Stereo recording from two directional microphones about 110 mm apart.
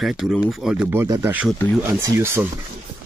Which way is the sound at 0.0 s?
Centre (ahead or behind).